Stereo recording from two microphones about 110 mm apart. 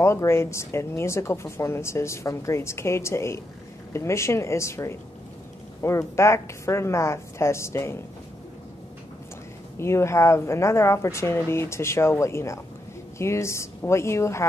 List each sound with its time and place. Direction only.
0.0 s speech: 25° left (ahead or behind)
9.8 s speech: 25° left (ahead or behind)